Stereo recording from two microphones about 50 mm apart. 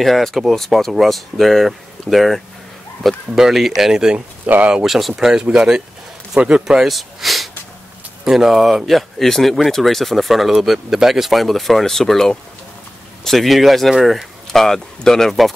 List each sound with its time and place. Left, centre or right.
0.0 s speech: centre
4.5 s speech: right
4.8 s a man's voice: centre
6.8 s speech: centre
14.6 s speech: centre